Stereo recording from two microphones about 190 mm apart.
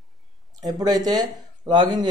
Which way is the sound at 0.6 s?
20° right (ahead or behind).